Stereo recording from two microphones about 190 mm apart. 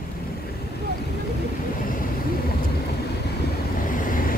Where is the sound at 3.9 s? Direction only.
45° left (ahead or behind).